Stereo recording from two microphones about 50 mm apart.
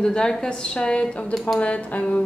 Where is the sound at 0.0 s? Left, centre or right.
Centre.